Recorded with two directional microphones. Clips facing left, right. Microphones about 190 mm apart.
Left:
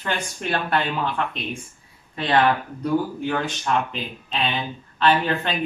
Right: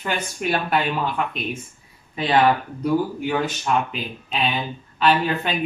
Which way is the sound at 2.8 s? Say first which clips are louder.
Right 1 dB; 5° right (ahead or behind).